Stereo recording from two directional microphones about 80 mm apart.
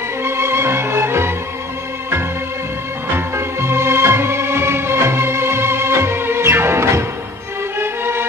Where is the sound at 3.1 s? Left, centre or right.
Right.